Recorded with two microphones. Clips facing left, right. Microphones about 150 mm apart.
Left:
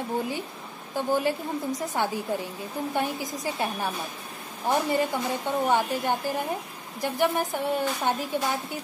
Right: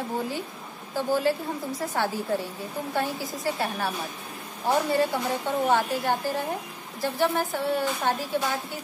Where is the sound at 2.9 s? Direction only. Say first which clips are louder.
Right 1 dB; 15° left (ahead or behind).